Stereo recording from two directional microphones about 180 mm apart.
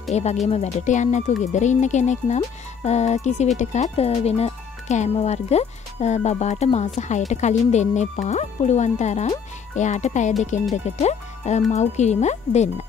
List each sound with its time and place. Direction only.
0.1 s speech: 40° left (ahead or behind)